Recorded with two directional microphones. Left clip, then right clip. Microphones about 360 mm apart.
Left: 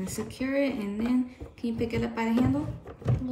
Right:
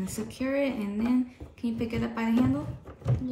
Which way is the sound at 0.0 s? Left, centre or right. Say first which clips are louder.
Left 1 dB; right.